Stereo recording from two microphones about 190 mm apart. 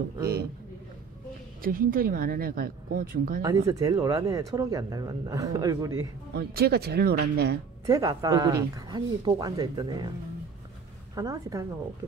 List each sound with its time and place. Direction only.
1.6 s speech: 50° right (ahead or behind)
3.4 s speech: 20° right (ahead or behind)
6.3 s speech: 55° right (ahead or behind)
7.8 s speech: 20° right (ahead or behind)
11.1 s a woman's voice: 20° right (ahead or behind)